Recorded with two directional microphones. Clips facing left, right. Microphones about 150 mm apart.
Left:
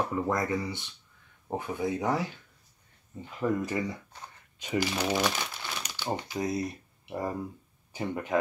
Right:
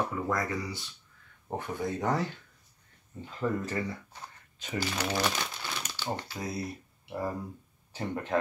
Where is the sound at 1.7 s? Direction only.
10° left (ahead or behind).